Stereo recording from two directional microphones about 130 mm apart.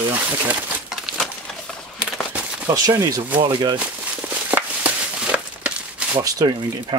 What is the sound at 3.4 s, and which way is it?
Speech, 35° right (ahead or behind).